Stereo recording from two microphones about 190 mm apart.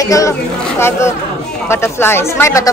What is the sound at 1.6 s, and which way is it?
A woman's voice, 10° left (ahead or behind).